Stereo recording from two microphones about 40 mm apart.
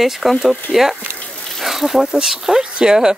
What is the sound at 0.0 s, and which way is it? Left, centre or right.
Speech, centre.